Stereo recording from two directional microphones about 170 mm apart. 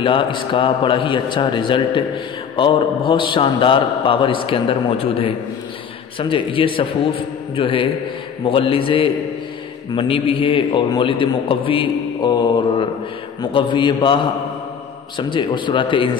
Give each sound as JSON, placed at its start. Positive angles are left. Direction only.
{"t": 0.0, "sound": "a man's voice", "side_deg": 30}